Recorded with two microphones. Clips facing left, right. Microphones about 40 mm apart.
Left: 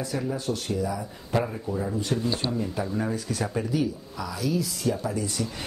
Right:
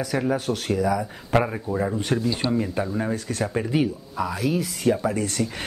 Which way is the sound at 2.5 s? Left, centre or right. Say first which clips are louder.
Right 5 dB; right.